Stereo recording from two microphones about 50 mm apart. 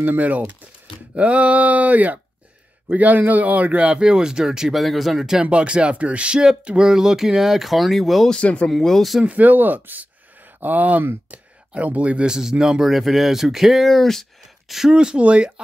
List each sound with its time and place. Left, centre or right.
0.0 s a man's voice: right; by 5.4 s centre
5.4 s speech: right
6.9 s speech: centre
8.3 s speech: left
8.6 s speech: centre
9.2 s speech: right
12.3 s speech: centre
14.9 s a man's voice: centre